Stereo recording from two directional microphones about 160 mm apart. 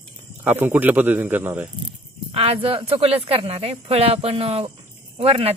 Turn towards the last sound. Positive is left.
turn(degrees=-40)  # may be behind; listen again after turning